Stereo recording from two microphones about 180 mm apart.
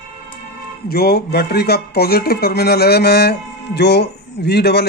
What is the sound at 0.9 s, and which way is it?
Speech, 60° left (ahead or behind).